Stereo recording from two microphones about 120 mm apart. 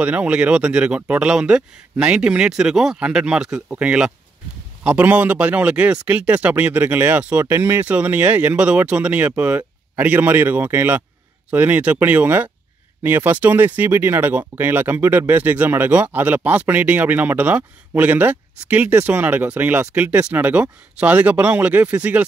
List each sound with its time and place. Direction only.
0.0 s speech: 10° right (ahead or behind)